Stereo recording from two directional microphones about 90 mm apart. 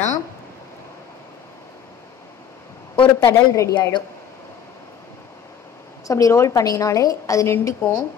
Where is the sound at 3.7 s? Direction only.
50° left (ahead or behind).